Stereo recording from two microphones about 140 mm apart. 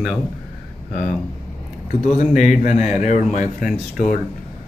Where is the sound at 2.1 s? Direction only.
55° left (ahead or behind); by 4.0 s 70° left (ahead or behind).